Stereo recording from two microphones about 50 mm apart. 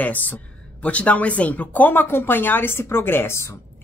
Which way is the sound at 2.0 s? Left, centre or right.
Left.